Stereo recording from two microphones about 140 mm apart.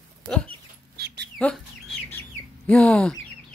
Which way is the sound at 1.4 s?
10° left (ahead or behind).